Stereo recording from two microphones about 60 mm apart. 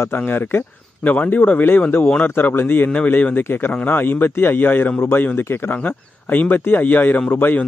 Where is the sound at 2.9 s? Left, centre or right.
Left.